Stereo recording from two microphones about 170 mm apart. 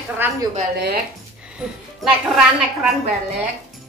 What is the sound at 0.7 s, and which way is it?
Speech, 75° right (ahead or behind).